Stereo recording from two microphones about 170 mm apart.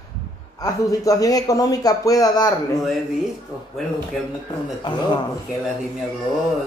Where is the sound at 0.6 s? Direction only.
20° left (ahead or behind).